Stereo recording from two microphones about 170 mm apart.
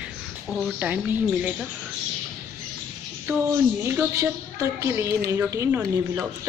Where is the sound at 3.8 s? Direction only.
15° right (ahead or behind).